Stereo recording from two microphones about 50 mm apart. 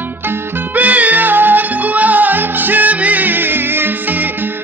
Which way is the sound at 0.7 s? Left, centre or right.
Right.